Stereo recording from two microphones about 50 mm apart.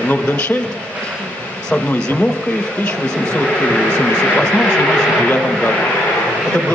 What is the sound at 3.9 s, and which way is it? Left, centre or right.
Speech, centre.